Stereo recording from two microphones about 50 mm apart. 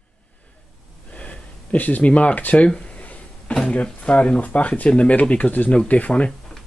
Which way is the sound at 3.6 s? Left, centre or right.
Left.